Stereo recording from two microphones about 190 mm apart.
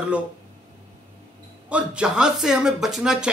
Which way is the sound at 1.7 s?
5° right (ahead or behind).